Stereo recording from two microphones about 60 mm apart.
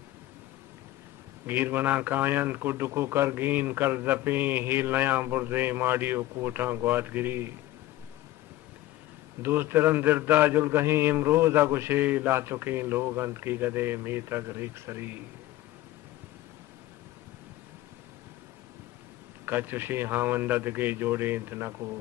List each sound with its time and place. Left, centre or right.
1.4 s a man's voice: right
9.4 s a man's voice: right
12.0 s a man's voice: right
19.4 s a man's voice: right